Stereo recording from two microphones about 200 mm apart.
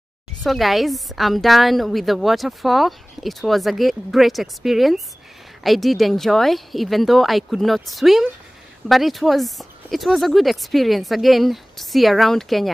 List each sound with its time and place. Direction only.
0.4 s a woman's voice: centre (ahead or behind)